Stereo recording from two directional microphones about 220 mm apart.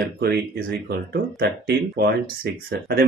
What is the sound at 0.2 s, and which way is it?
Speech, 45° right (ahead or behind).